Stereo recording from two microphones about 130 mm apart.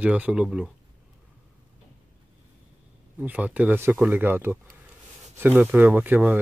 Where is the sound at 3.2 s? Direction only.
10° right (ahead or behind).